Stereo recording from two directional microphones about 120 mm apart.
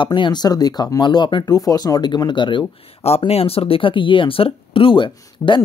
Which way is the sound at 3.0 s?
55° left (ahead or behind).